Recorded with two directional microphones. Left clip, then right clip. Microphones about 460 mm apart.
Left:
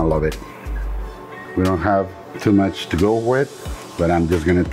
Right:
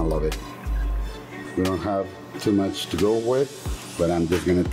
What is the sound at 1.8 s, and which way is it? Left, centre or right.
Speech, left.